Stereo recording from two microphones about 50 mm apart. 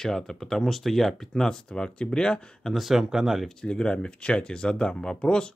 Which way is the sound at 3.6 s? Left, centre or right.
Centre.